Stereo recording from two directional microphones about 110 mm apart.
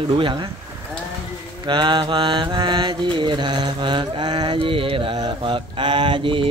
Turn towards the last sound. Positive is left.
turn(degrees=-50)  # may be behind; listen again after turning